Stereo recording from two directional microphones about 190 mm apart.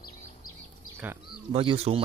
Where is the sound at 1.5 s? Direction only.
30° right (ahead or behind).